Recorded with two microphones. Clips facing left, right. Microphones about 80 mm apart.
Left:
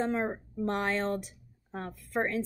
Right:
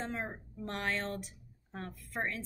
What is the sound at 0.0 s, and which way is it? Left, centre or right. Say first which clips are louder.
A woman's voice: left 9 dB; left.